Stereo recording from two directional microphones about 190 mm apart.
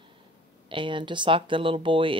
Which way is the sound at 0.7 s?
25° right (ahead or behind).